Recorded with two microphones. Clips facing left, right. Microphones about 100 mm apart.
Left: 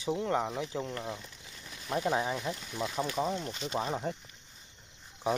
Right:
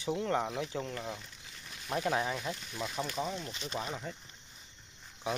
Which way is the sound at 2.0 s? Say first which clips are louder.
Left 2 dB; 20° left (ahead or behind).